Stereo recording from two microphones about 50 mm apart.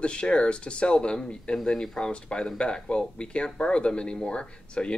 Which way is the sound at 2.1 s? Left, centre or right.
Centre.